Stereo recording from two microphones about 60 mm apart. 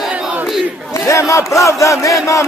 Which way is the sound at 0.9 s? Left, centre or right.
Left.